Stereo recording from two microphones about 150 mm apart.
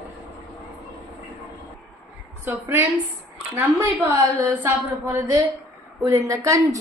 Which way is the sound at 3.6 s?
15° right (ahead or behind).